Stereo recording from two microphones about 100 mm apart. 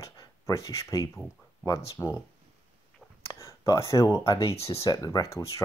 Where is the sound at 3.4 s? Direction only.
35° left (ahead or behind).